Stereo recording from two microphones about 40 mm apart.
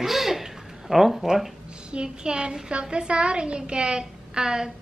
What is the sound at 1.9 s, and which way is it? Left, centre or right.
A woman's voice, right.